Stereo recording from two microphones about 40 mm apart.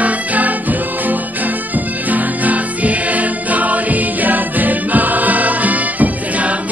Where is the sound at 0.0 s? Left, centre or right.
Right.